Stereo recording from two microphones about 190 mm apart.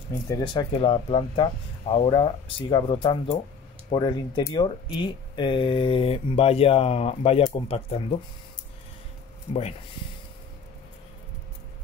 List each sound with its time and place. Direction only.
0.3 s speech: 25° left (ahead or behind)
9.5 s speech: 35° left (ahead or behind)